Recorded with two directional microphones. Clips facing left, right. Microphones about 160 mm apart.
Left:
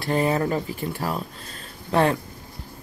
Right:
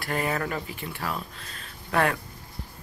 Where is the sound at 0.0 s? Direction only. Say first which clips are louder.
Left 6 dB; 25° left (ahead or behind).